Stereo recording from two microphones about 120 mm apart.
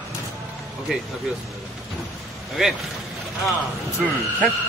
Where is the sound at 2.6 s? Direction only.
5° right (ahead or behind).